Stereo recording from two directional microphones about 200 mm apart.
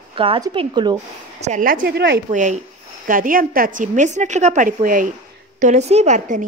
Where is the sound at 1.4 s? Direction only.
40° right (ahead or behind).